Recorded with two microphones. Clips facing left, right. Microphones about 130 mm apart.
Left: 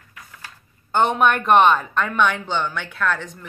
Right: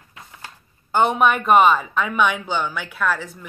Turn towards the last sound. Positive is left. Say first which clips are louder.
# right 1 dB
turn(degrees=-5)  # may be behind; listen again after turning